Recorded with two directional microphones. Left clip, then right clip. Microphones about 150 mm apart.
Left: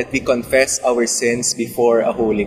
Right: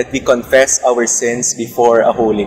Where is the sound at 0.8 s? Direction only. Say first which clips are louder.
Right 4 dB; 20° right (ahead or behind).